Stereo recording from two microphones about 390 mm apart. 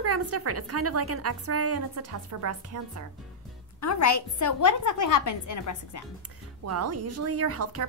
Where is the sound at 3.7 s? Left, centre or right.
Left.